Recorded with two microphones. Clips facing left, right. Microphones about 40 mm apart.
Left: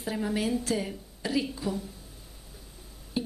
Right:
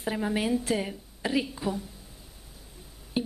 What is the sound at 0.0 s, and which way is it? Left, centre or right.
Speech, centre.